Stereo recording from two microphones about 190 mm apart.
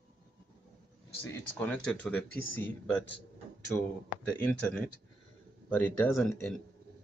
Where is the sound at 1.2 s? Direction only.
10° left (ahead or behind).